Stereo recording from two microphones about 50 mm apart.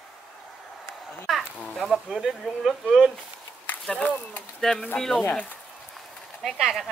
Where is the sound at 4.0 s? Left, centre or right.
Left.